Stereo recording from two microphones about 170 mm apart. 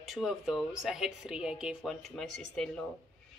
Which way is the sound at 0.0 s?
Centre (ahead or behind).